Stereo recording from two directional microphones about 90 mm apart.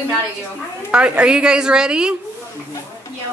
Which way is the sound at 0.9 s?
10° right (ahead or behind).